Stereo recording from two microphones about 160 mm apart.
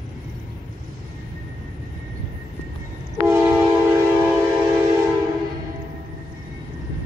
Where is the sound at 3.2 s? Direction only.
15° right (ahead or behind).